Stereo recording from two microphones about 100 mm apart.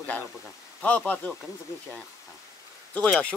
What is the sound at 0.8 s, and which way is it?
Speech, 15° left (ahead or behind).